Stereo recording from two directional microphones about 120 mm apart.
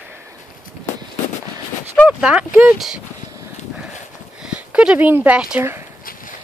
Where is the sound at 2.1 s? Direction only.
10° right (ahead or behind).